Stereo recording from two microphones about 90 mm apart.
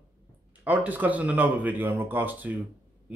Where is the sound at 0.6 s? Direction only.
15° right (ahead or behind).